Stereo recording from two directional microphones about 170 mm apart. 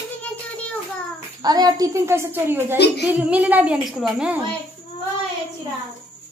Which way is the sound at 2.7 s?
80° left.